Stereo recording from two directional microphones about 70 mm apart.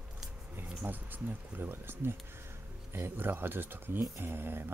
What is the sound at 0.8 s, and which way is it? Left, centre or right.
A man's voice, right.